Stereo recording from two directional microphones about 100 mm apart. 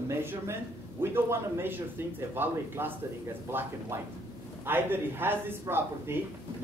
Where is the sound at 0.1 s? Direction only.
25° right (ahead or behind).